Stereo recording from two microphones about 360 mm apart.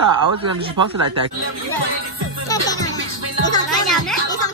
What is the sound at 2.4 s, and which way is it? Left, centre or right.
Music, centre.